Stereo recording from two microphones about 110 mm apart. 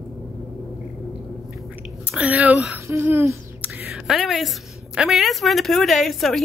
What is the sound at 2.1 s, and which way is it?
Speech, 10° right (ahead or behind).